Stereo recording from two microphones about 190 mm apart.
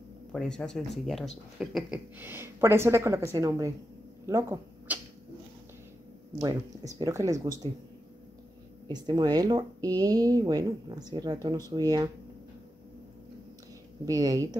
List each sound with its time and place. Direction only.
0.3 s a woman's voice: 5° left (ahead or behind)
6.4 s a woman's voice: 20° right (ahead or behind)
8.8 s speech: 20° right (ahead or behind)
14.0 s speech: 20° right (ahead or behind)